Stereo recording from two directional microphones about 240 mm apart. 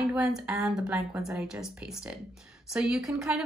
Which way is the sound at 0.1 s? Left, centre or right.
Centre.